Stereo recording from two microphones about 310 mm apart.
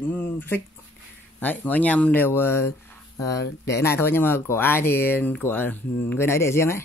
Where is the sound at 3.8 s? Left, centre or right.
Centre.